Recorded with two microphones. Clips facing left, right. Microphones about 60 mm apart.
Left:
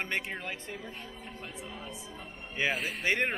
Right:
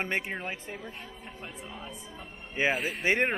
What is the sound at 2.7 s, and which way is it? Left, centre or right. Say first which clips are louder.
Speech: right 3 dB; centre.